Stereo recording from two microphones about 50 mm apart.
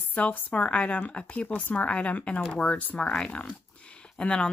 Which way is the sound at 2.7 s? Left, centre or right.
Left.